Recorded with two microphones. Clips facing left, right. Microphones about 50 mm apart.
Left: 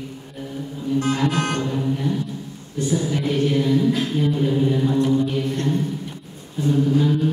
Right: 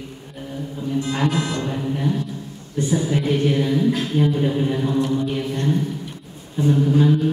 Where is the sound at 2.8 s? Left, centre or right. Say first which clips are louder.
Right 1 dB; centre.